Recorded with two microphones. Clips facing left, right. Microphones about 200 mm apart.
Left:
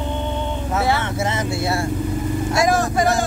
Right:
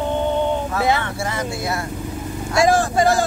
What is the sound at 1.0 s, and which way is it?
Vehicle, 20° left (ahead or behind).